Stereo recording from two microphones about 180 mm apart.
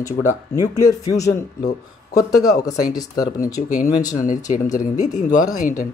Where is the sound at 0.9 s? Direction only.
20° left (ahead or behind).